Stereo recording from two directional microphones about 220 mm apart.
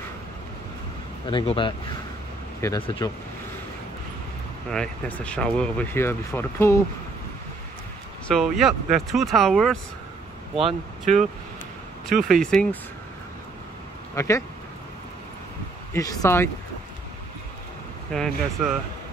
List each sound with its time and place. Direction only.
1.3 s speech: 20° left (ahead or behind)
4.6 s speech: 5° left (ahead or behind)
8.3 s speech: centre (ahead or behind)
10.5 s speech: 25° right (ahead or behind)
12.3 s speech: centre (ahead or behind)
14.1 s speech: 15° left (ahead or behind)
15.9 s speech: 15° left (ahead or behind)
18.1 s speech: 5° left (ahead or behind)